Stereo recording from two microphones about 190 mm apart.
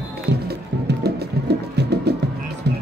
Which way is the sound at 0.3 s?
60° right (ahead or behind).